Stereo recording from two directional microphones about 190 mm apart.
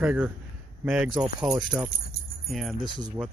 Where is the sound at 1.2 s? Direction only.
20° right (ahead or behind).